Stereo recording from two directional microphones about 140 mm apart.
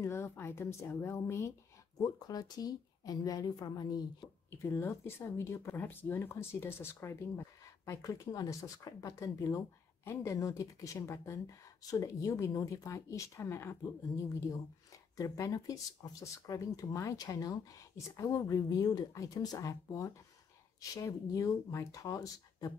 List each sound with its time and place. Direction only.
0.0 s a woman's voice: 20° left (ahead or behind)
4.5 s speech: 15° left (ahead or behind)
15.1 s speech: 20° left (ahead or behind)